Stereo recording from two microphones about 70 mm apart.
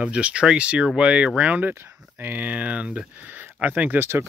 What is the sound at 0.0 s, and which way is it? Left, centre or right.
Speech, centre.